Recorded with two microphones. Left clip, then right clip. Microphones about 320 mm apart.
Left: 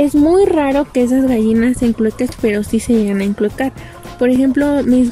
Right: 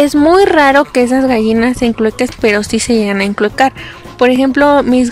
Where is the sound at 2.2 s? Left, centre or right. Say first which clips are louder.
Right 5 dB; right.